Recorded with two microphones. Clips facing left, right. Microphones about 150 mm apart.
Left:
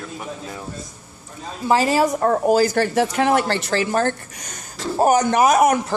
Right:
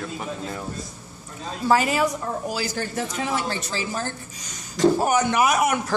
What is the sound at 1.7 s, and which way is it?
Speech, 35° left (ahead or behind).